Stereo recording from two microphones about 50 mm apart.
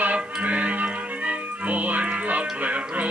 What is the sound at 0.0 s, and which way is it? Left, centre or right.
Music, right.